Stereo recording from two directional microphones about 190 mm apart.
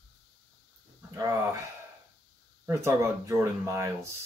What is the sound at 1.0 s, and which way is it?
Speech, 15° right (ahead or behind).